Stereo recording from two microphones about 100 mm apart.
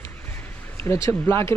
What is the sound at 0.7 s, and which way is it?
Speech, 30° left (ahead or behind).